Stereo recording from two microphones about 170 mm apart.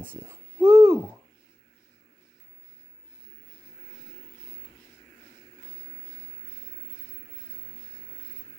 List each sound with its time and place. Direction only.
0.0 s babbling: 10° right (ahead or behind)